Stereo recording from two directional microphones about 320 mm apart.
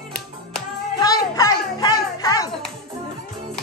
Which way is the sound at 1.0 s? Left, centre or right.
Centre.